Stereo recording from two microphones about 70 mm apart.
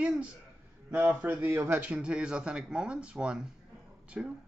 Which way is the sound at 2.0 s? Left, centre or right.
Centre.